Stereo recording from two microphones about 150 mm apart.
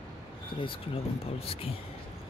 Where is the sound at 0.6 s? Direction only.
40° left (ahead or behind).